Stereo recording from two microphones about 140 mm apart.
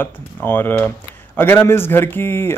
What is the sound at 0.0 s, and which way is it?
Speech, 15° left (ahead or behind).